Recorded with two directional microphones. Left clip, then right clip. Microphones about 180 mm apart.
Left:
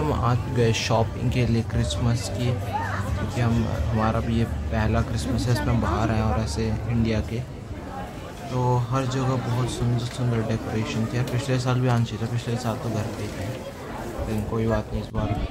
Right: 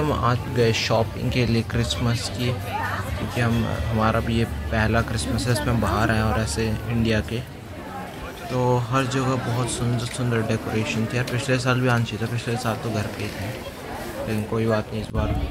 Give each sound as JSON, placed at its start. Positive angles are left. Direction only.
{"t": 0.0, "sound": "speech", "side_deg": -5}
{"t": 8.5, "sound": "speech", "side_deg": -15}